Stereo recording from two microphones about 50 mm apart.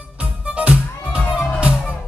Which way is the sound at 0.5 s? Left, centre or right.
Right.